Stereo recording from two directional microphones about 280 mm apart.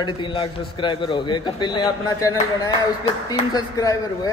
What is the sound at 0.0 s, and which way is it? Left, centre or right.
A man's voice, centre.